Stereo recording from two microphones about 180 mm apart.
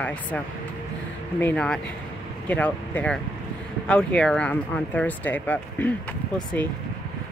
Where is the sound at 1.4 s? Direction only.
5° left (ahead or behind).